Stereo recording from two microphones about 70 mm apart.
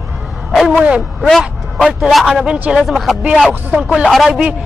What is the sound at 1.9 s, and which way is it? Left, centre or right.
Speech, centre.